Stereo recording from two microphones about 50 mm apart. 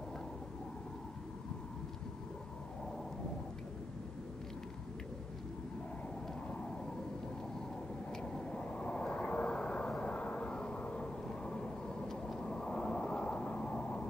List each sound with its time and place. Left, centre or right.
8.1 s vehicle: centre